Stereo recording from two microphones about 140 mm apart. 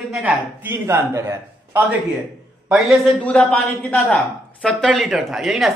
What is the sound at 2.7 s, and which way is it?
A man's voice, centre (ahead or behind).